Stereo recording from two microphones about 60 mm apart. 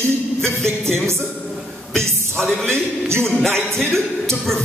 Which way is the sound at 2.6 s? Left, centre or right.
Right.